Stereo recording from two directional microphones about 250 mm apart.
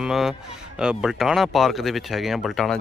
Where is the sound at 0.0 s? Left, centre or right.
Centre.